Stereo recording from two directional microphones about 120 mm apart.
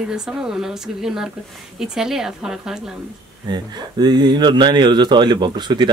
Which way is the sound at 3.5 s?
35° right (ahead or behind).